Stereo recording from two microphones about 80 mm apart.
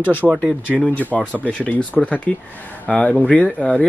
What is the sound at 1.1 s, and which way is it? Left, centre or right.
Speech, centre.